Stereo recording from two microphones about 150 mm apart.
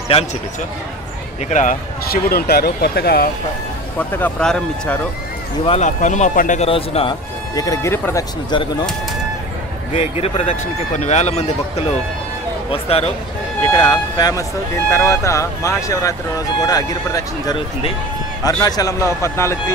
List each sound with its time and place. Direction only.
1.5 s speech: 55° left (ahead or behind)
2.2 s speech: 85° left
4.2 s speech: 5° left (ahead or behind)
5.7 s speech: 50° left (ahead or behind)
6.6 s a man's voice: 40° left (ahead or behind)
7.5 s speech: 25° left (ahead or behind)
9.9 s a man's voice: 45° left (ahead or behind)
13.7 s speech: 30° left (ahead or behind)